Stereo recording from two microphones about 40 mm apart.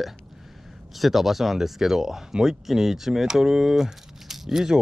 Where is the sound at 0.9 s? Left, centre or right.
Centre.